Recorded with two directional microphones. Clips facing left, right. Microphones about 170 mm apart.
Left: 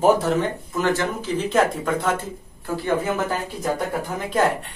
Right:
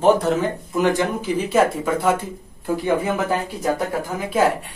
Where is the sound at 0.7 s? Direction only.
15° right (ahead or behind).